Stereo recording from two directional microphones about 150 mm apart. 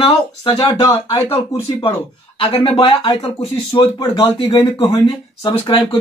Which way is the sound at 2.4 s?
40° left (ahead or behind).